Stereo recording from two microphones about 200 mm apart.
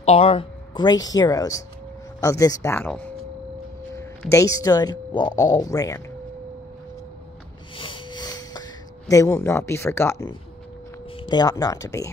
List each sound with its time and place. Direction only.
0.0 s a woman's voice: 30° left (ahead or behind)
7.7 s a sound: 25° left (ahead or behind)
11.1 s speech: 20° left (ahead or behind)